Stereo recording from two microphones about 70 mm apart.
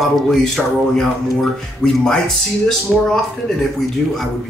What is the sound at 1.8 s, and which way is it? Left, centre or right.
Speech, centre.